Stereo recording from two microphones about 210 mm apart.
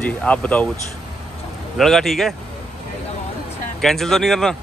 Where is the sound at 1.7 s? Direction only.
Centre (ahead or behind).